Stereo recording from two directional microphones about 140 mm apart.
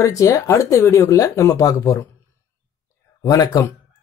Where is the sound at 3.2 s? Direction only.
25° left (ahead or behind).